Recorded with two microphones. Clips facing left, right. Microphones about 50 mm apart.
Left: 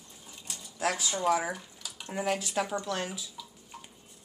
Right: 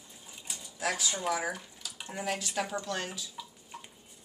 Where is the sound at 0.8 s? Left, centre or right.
Centre.